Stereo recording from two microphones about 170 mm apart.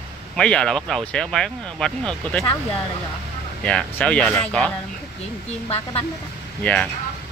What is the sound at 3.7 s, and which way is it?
Speech, 5° left (ahead or behind).